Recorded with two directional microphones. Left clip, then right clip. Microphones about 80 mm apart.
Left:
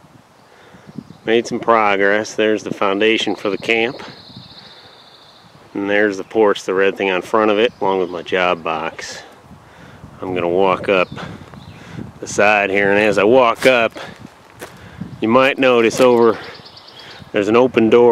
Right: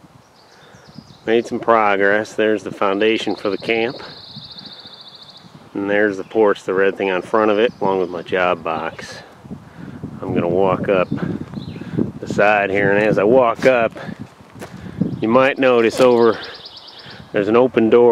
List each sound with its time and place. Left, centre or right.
1.2 s speech: left
5.8 s speech: left
10.2 s speech: left
12.3 s speech: left
13.7 s speech: left
15.1 s speech: left
16.0 s speech: centre
17.1 s speech: left